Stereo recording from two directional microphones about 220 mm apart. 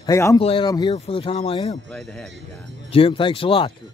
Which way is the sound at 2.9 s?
25° left (ahead or behind).